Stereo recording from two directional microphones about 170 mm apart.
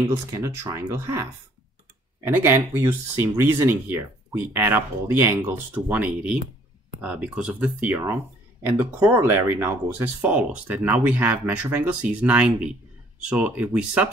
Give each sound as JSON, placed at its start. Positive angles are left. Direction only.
{"t": 0.1, "sound": "speech", "side_deg": -15}
{"t": 2.2, "sound": "speech", "side_deg": -15}